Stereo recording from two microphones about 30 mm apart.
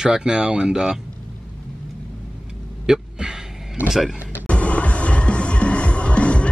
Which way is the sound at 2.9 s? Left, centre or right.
Right.